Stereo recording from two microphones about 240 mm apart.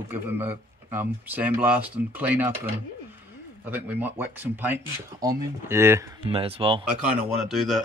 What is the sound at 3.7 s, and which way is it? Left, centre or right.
Speech, centre.